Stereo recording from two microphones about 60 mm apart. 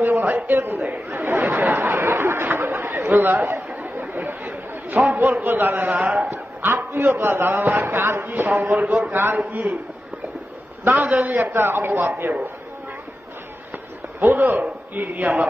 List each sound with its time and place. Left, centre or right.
0.0 s a sound: right
0.5 s a man's voice: right
0.8 s chatter: right
1.7 s chatter: right
5.1 s a man's voice: right
6.3 s a sound: right
7.2 s a man's voice: right
10.8 s a man's voice: right
11.4 s a man's voice: right
14.3 s a man's voice: right